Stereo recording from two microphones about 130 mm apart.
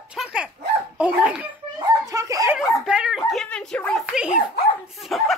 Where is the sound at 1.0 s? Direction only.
10° right (ahead or behind).